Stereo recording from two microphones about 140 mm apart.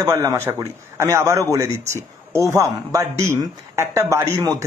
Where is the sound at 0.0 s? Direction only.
20° right (ahead or behind).